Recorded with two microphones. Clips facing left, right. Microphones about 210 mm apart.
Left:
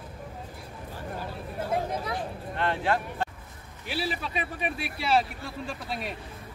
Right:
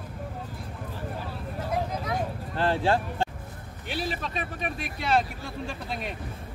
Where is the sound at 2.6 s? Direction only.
30° right (ahead or behind).